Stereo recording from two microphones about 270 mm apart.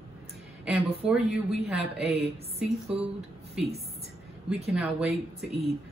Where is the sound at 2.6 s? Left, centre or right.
Right.